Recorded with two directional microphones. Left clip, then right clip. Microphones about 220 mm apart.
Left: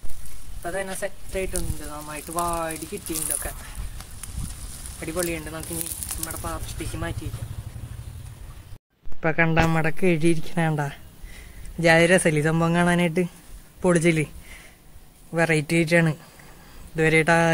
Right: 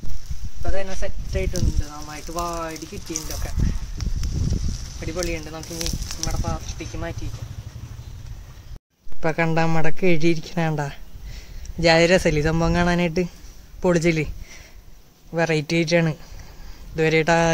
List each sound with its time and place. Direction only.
0.6 s speech: 15° left (ahead or behind)
5.0 s speech: 20° left (ahead or behind)
9.2 s speech: 10° right (ahead or behind)